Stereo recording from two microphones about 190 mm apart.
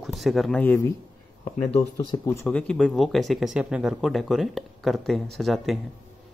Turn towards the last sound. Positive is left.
turn(degrees=0)  # may be behind; listen again after turning